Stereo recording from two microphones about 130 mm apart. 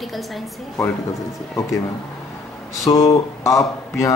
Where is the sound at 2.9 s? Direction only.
25° left (ahead or behind).